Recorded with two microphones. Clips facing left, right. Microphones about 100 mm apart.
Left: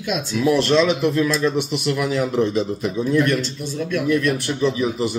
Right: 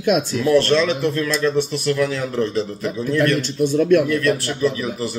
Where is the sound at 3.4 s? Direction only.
50° right (ahead or behind).